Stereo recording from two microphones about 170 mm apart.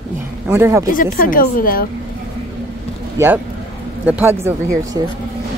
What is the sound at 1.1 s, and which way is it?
Speech, 55° left (ahead or behind).